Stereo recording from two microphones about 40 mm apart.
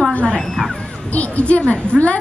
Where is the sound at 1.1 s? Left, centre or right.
Left.